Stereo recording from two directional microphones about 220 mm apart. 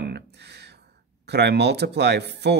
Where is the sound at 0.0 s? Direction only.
50° right (ahead or behind).